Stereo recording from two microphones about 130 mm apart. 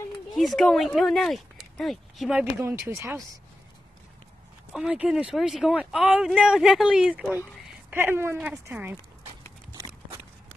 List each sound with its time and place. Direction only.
0.4 s speech: centre (ahead or behind)
2.6 s speech: 20° right (ahead or behind)
4.7 s speech: 5° right (ahead or behind)